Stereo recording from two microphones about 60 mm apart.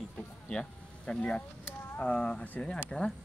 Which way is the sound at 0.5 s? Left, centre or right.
Centre.